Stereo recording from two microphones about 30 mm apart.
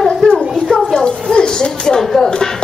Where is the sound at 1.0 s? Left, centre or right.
Left.